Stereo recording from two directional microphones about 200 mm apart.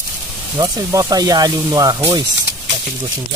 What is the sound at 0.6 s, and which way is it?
Speech, 15° right (ahead or behind).